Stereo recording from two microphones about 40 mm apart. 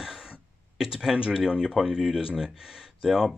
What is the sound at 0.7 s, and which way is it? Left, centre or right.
Speech, right.